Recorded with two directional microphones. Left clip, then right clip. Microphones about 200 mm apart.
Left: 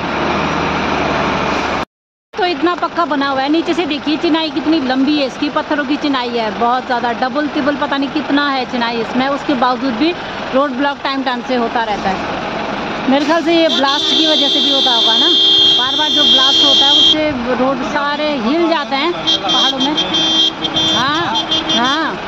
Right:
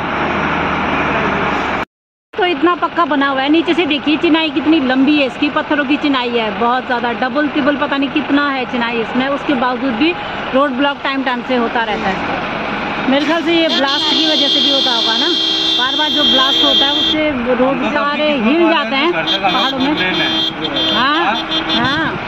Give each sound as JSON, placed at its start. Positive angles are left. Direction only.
{"t": 2.4, "sound": "speech", "side_deg": 0}
{"t": 9.6, "sound": "speech", "side_deg": 10}
{"t": 13.1, "sound": "speech", "side_deg": 15}
{"t": 13.7, "sound": "speech", "side_deg": -40}
{"t": 16.1, "sound": "speech", "side_deg": -15}